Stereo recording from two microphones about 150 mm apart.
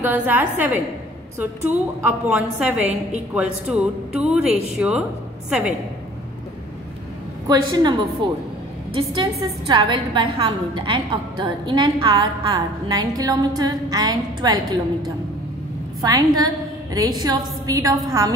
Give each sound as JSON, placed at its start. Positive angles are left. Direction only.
{"t": 0.0, "sound": "speech", "side_deg": -10}
{"t": 7.4, "sound": "a woman's voice", "side_deg": -25}
{"t": 16.0, "sound": "a woman's voice", "side_deg": -25}